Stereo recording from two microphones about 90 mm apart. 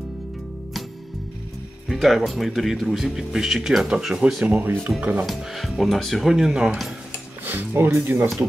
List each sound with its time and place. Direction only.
1.9 s speech: 5° right (ahead or behind)
5.2 s speech: centre (ahead or behind)
7.4 s speech: 20° right (ahead or behind)